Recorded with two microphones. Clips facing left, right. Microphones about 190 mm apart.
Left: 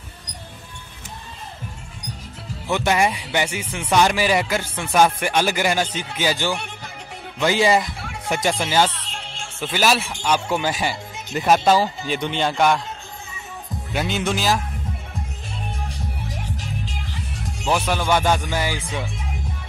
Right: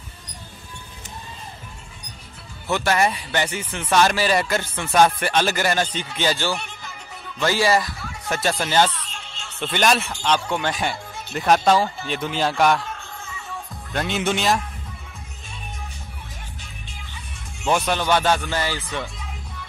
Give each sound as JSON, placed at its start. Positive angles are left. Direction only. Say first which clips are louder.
{"t": 2.7, "sound": "speech", "louder": "left 1 dB", "side_deg": 15}
{"t": 9.0, "sound": "music", "louder": "left 4 dB", "side_deg": 30}
{"t": 9.6, "sound": "speech", "louder": "even", "side_deg": 5}
{"t": 13.9, "sound": "speech", "louder": "even", "side_deg": 0}
{"t": 16.3, "sound": "music", "louder": "left 11 dB", "side_deg": 90}
{"t": 17.6, "sound": "speech", "louder": "even", "side_deg": 10}